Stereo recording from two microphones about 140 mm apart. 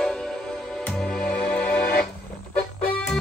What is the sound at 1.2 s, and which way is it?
Music, 10° left (ahead or behind).